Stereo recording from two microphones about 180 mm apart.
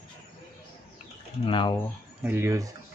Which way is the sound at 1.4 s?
25° left (ahead or behind).